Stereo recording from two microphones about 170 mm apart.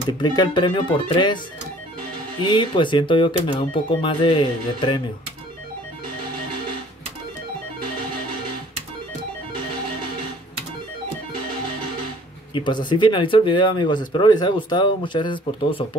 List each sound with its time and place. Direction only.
0.2 s speech: 25° left (ahead or behind)
2.4 s speech: 30° left (ahead or behind)
12.5 s speech: 25° left (ahead or behind)